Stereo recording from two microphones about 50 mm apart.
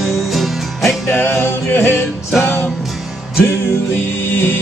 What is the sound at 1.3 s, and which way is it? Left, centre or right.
Music, left.